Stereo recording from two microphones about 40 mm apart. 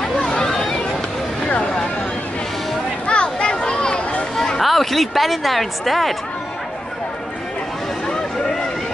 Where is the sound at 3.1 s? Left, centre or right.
Left.